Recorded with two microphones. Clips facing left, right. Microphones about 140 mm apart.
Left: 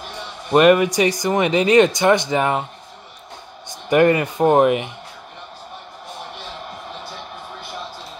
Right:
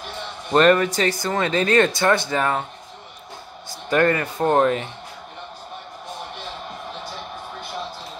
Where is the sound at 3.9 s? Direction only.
15° left (ahead or behind).